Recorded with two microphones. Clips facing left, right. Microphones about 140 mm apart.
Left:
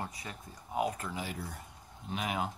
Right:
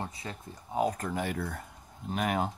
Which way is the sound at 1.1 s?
55° right (ahead or behind).